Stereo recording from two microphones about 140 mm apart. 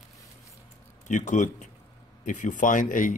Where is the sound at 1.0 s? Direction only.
60° left (ahead or behind).